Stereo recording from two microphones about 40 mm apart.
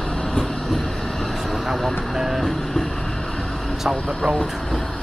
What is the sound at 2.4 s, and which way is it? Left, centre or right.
Vehicle, centre.